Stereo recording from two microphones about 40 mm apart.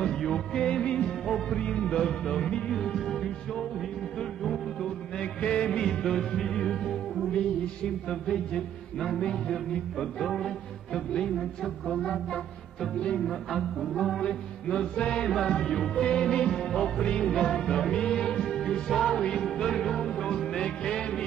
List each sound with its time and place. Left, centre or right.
0.0 s music: centre
0.8 s music: left
1.2 s music: centre
4.8 s music: left
9.2 s music: centre
11.3 s a man's voice: centre
12.0 s music: centre
13.2 s a man's voice: centre
14.2 s music: left
17.0 s music: centre
17.3 s music: centre